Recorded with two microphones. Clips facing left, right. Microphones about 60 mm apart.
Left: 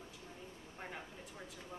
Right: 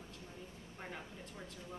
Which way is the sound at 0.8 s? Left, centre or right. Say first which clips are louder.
Even; centre.